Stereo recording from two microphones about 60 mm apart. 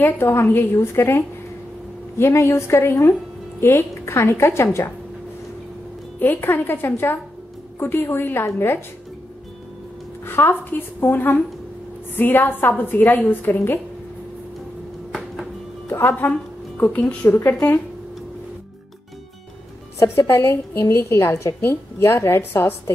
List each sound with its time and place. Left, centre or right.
0.0 s a woman's voice: left
6.1 s a woman's voice: left
10.2 s a woman's voice: left
15.9 s speech: left
16.3 s music: left
17.3 s a woman's voice: left
20.0 s a woman's voice: left